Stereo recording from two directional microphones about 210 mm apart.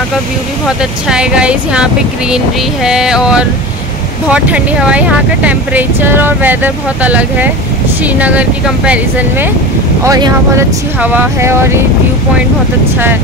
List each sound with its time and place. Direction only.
0.7 s speech: 5° right (ahead or behind)
10.0 s speech: 15° right (ahead or behind)